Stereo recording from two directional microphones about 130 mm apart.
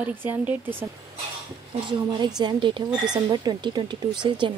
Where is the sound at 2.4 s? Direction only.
35° right (ahead or behind).